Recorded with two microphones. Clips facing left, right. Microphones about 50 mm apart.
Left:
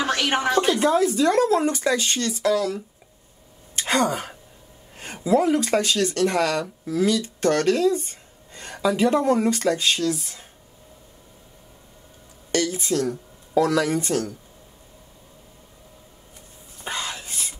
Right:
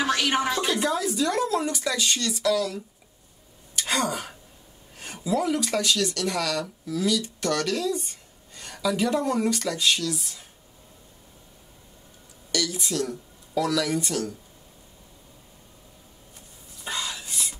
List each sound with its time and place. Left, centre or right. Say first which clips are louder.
0.0 s a woman's voice: left 2 dB; left
12.4 s speech: left 5 dB; left
16.7 s a sound: left 2 dB; left